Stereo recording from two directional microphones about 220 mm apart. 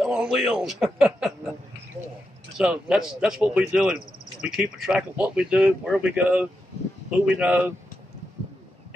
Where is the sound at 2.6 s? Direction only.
5° right (ahead or behind).